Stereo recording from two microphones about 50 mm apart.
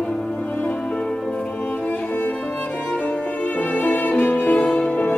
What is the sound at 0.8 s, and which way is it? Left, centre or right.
Music, centre.